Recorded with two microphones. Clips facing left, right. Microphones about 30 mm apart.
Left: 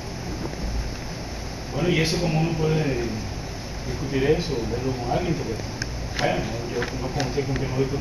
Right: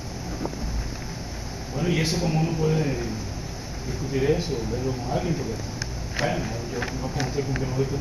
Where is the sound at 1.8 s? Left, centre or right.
Centre.